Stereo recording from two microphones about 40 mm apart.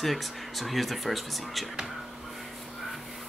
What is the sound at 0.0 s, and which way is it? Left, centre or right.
Speech, centre.